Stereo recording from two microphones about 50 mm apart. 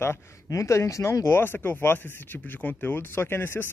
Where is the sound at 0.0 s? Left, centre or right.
Left.